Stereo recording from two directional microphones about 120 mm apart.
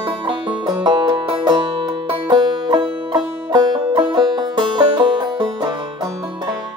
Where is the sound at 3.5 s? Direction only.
35° right (ahead or behind).